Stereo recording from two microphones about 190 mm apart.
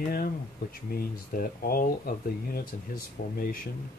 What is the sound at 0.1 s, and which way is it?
Speech, 50° left (ahead or behind).